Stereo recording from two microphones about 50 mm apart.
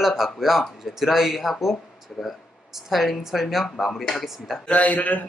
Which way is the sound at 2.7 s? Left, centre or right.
Centre.